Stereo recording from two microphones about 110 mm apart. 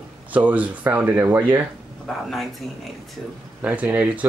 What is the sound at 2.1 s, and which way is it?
Speech, 5° left (ahead or behind).